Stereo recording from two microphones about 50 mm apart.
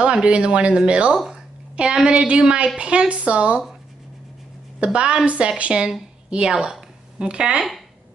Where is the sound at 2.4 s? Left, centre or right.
Centre.